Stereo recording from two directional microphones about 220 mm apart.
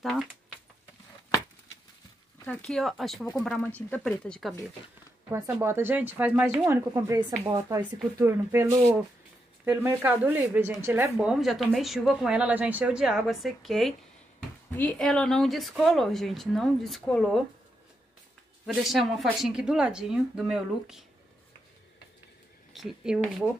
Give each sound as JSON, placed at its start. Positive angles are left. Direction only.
{"t": 2.4, "sound": "speech", "side_deg": 5}
{"t": 5.3, "sound": "speech", "side_deg": -10}
{"t": 18.9, "sound": "speech", "side_deg": 0}
{"t": 22.7, "sound": "speech", "side_deg": 0}